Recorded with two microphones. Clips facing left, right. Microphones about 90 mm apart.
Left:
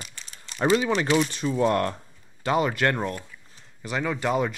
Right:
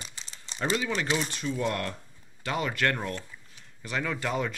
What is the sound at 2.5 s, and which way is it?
Speech, 25° left (ahead or behind).